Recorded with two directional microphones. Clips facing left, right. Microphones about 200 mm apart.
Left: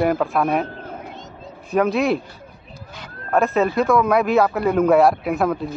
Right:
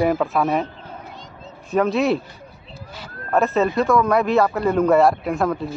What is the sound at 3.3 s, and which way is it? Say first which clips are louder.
Speech: even; centre (ahead or behind).